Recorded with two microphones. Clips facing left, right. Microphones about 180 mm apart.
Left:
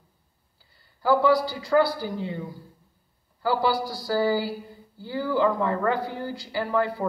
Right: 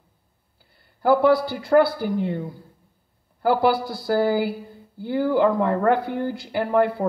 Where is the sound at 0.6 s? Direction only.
55° right (ahead or behind).